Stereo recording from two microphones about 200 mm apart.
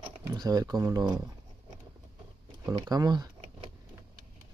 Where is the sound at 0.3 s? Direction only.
20° right (ahead or behind).